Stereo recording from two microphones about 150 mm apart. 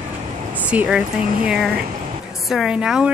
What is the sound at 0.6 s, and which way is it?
A woman's voice, 10° right (ahead or behind).